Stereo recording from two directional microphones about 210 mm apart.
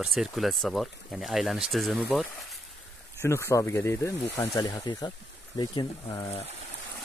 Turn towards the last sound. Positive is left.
turn(degrees=20)  # may be behind; listen again after turning